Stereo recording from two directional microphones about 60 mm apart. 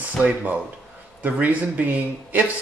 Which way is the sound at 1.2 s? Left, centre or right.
Right.